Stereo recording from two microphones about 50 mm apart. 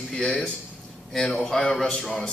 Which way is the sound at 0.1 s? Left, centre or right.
Centre.